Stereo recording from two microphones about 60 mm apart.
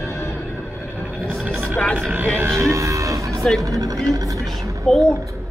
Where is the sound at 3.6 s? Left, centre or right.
Right.